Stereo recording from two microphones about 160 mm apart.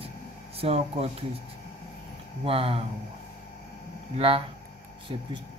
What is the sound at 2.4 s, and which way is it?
Speech, 35° right (ahead or behind).